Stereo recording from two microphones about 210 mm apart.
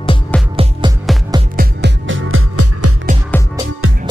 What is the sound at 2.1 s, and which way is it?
Music, 70° right (ahead or behind).